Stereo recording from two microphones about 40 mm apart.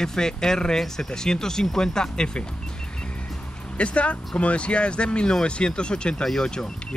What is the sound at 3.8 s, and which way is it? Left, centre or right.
Speech, left.